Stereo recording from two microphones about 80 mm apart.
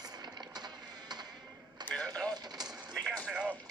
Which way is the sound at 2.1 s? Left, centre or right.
Right.